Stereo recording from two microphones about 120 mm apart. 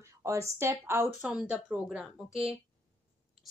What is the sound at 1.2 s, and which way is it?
Speech, 5° right (ahead or behind).